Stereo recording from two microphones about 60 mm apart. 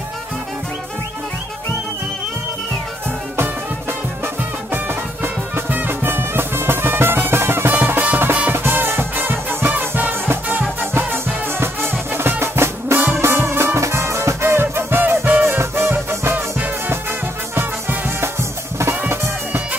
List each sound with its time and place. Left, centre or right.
5.2 s music: right
17.6 s music: right